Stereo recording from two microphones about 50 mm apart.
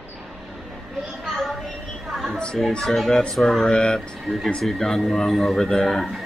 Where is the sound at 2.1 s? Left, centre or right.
Centre.